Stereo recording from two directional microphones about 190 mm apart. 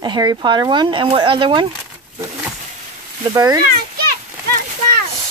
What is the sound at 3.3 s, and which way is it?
Speech, 20° right (ahead or behind).